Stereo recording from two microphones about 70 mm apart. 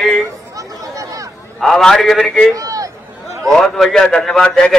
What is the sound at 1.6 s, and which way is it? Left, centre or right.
Speech, centre.